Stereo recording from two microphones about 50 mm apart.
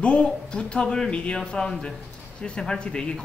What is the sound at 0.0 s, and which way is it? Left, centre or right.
A man's voice, left.